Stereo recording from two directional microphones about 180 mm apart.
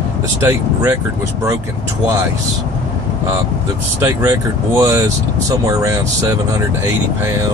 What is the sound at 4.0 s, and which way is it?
Speech, 15° right (ahead or behind).